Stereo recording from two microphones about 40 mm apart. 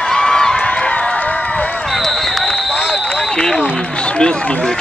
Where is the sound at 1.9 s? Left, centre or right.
Centre.